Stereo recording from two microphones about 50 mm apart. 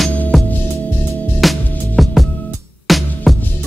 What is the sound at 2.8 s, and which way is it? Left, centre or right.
Music, centre.